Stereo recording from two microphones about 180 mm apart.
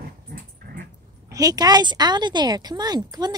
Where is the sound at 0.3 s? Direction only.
60° right (ahead or behind).